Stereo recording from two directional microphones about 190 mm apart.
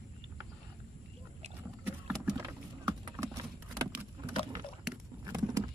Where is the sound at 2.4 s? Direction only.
15° right (ahead or behind).